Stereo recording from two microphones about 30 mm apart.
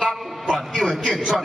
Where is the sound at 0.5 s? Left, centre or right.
Centre.